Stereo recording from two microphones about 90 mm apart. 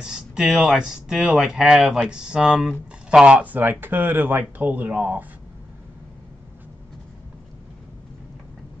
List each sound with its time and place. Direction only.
0.0 s speech: 10° right (ahead or behind)